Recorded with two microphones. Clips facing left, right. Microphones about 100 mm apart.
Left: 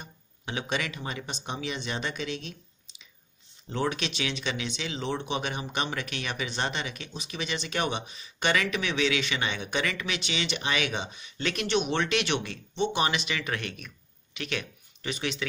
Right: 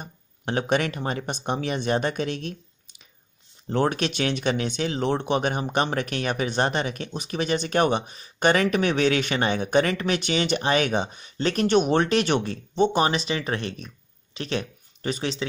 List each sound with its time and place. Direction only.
0.0 s speech: 50° right (ahead or behind)